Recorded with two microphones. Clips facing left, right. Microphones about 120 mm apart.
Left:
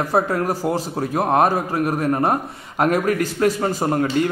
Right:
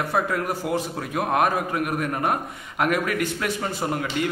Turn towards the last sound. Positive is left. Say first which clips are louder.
# left 6 dB
turn(degrees=40)  # may be behind; listen again after turning